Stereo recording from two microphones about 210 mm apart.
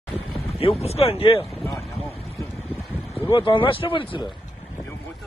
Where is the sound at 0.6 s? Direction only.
30° left (ahead or behind).